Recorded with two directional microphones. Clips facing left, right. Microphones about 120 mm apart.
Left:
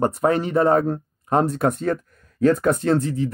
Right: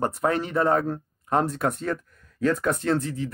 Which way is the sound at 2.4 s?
35° left (ahead or behind).